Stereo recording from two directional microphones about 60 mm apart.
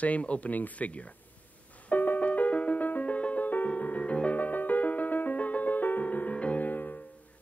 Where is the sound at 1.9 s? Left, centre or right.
Left.